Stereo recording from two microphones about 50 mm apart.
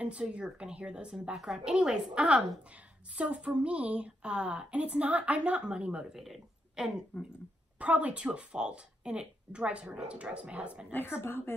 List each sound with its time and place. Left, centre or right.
0.0 s speech: right
1.3 s a woman's voice: centre
2.7 s speech: right
6.1 s speech: centre
6.8 s a woman's voice: centre
7.8 s speech: right
10.9 s a woman's voice: left